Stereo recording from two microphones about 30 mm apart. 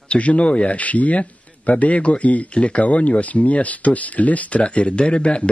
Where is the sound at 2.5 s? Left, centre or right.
Left.